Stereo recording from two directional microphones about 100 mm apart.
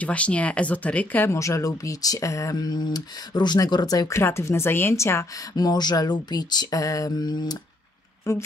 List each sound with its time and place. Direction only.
0.0 s speech: 15° left (ahead or behind); by 4.1 s 40° left (ahead or behind)
4.1 s speech: 25° left (ahead or behind)
5.6 s a sound: 45° left (ahead or behind)
8.3 s speech: 30° left (ahead or behind)